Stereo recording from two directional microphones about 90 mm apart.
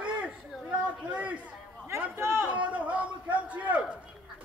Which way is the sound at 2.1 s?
25° right (ahead or behind).